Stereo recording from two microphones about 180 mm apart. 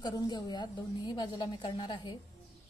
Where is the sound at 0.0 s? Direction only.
25° left (ahead or behind).